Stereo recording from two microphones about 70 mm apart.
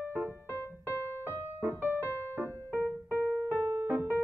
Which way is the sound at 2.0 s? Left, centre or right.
Left.